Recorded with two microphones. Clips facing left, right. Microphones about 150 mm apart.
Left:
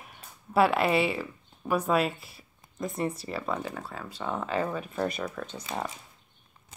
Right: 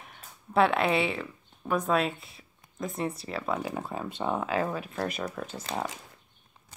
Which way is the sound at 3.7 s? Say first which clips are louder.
Right 5 dB; 20° right (ahead or behind).